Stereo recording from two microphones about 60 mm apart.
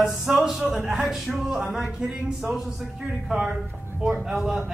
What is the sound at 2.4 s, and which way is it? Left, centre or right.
A man's voice, centre.